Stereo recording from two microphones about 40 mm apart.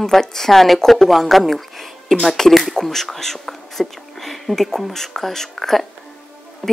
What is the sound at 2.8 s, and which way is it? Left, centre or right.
Speech, centre.